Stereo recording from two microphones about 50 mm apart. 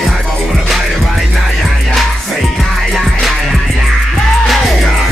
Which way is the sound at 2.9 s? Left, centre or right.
Centre.